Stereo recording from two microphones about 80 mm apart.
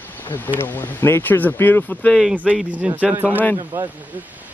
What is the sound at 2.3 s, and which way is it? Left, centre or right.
Speech, centre.